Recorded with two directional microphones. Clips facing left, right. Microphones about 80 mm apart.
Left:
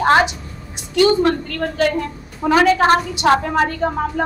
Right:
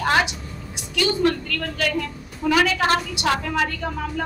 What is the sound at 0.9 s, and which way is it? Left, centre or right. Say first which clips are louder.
A woman's voice: left 6 dB; left.